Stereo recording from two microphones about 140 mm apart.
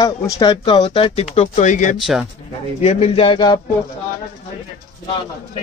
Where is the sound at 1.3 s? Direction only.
50° left (ahead or behind).